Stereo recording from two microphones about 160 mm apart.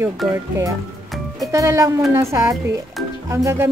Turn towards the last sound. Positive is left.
turn(degrees=-20)  # may be behind; listen again after turning